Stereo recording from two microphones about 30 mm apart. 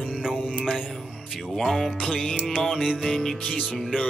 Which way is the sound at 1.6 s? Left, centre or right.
Centre.